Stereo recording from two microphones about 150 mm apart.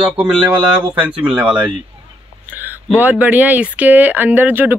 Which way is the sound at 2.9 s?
10° right (ahead or behind).